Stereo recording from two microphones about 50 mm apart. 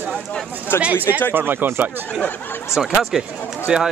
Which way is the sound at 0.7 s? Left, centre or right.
Left.